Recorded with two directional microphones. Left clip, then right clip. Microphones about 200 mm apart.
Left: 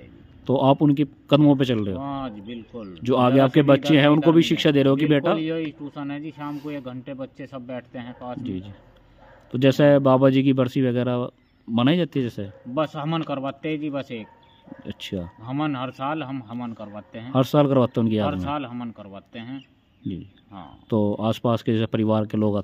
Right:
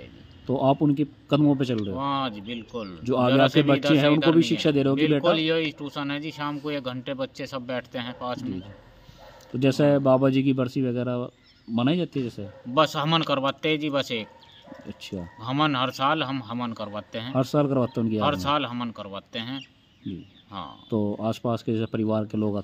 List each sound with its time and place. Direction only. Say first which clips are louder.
0.5 s speech: left 4 dB; 35° left (ahead or behind)
0.7 s speech: left 3 dB; 25° left (ahead or behind)
2.0 s a man's voice: right 4 dB; 5° right (ahead or behind)
3.0 s speech: left 2 dB; 25° left (ahead or behind)
4.3 s speech: left 3 dB; 25° left (ahead or behind)
5.4 s a man's voice: right 3 dB; 5° right (ahead or behind)
9.5 s speech: left 5 dB; 20° left (ahead or behind)
12.7 s speech: right 4 dB; 5° right (ahead or behind)
15.0 s speech: left 5 dB; 25° left (ahead or behind)
15.4 s a man's voice: right 5 dB; 5° right (ahead or behind)
17.3 s speech: left 5 dB; 25° left (ahead or behind)
18.2 s a man's voice: right 3 dB; 10° right (ahead or behind)
20.9 s speech: left 4 dB; 30° left (ahead or behind)